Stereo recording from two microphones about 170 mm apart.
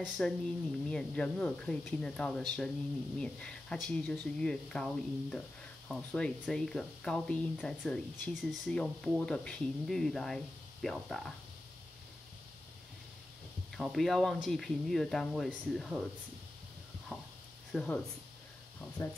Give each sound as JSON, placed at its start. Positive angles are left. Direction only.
{"t": 0.2, "sound": "speech", "side_deg": 5}
{"t": 13.7, "sound": "speech", "side_deg": 0}
{"t": 17.7, "sound": "speech", "side_deg": 5}
{"t": 19.0, "sound": "speech", "side_deg": 20}